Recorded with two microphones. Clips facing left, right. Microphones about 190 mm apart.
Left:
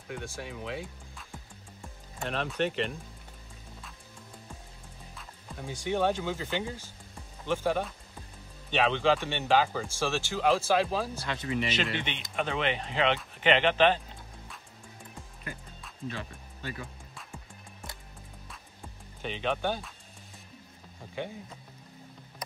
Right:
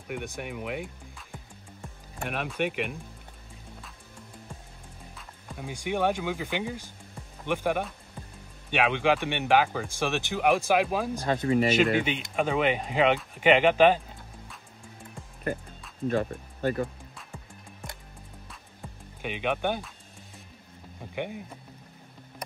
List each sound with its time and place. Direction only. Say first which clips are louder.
0.1 s speech: right 4 dB; 20° right (ahead or behind)
2.1 s speech: even; 10° right (ahead or behind)
5.6 s speech: right 1 dB; 15° right (ahead or behind)
11.2 s speech: right 8 dB; 45° right (ahead or behind)
12.0 s speech: right 6 dB; 10° right (ahead or behind)
16.1 s speech: right 13 dB; 50° right (ahead or behind)
19.2 s speech: right 2 dB; 15° right (ahead or behind)
21.1 s a sound: right 3 dB; 15° right (ahead or behind)